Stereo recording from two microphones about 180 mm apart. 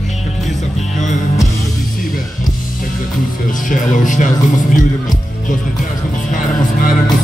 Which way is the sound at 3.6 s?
45° left (ahead or behind).